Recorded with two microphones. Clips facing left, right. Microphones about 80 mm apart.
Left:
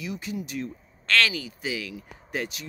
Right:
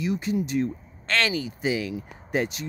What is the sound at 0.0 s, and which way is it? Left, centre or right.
Speech, right.